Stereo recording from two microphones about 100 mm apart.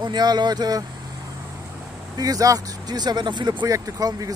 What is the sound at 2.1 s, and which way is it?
Speech, 40° right (ahead or behind).